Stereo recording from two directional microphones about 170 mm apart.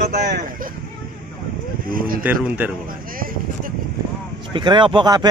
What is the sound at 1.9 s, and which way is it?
Speech, 55° right (ahead or behind).